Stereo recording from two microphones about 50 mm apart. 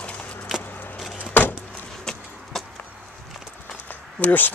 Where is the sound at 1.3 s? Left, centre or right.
Left.